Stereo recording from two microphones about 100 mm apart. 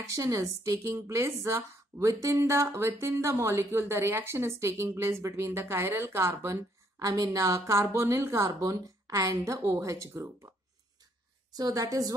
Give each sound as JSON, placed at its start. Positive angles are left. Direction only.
{"t": 0.1, "sound": "speech", "side_deg": -35}
{"t": 8.5, "sound": "a woman's voice", "side_deg": -35}
{"t": 11.5, "sound": "a woman's voice", "side_deg": -40}